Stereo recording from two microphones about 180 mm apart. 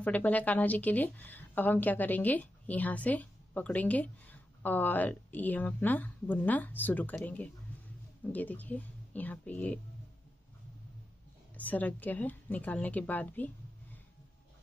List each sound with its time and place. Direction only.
0.0 s a woman's voice: 10° left (ahead or behind)
11.5 s a woman's voice: 10° left (ahead or behind)